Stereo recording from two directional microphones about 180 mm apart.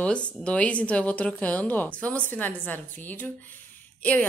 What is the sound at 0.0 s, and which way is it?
A woman's voice, 5° left (ahead or behind).